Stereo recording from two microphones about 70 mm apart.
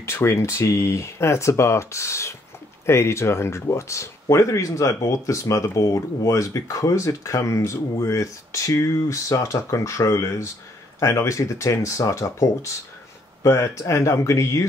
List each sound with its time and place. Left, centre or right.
0.0 s speech: left